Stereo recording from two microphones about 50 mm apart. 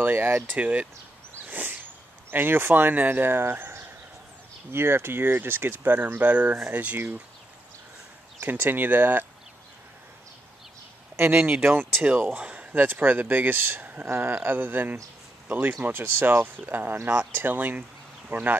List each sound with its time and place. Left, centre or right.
0.0 s speech: right
0.6 s speech: right
1.4 s a sound: right
2.3 s speech: right
6.2 s speech: right
6.7 s speech: right
8.5 s speech: right
11.3 s speech: right
11.6 s speech: right
12.4 s speech: right
14.0 s speech: right